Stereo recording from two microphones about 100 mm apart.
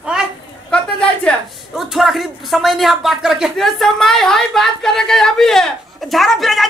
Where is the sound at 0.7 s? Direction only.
10° left (ahead or behind).